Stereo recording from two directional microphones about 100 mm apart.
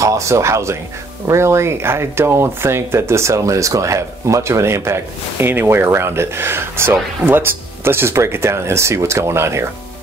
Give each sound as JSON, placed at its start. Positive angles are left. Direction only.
{"t": 0.0, "sound": "speech", "side_deg": -30}